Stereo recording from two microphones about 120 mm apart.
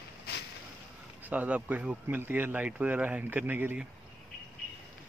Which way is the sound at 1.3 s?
15° right (ahead or behind).